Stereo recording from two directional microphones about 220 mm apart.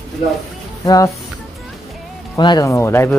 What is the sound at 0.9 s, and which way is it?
Speech, 15° left (ahead or behind).